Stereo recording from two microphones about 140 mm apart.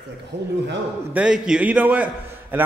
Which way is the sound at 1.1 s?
5° right (ahead or behind).